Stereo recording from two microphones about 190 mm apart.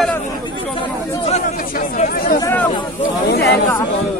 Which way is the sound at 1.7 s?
45° left (ahead or behind).